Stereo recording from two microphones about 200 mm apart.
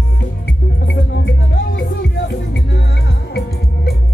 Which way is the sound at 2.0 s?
55° left (ahead or behind).